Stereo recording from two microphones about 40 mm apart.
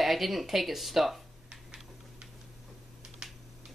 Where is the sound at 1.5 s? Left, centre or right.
Right.